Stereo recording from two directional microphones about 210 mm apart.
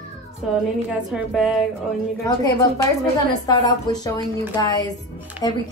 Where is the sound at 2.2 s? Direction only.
15° left (ahead or behind).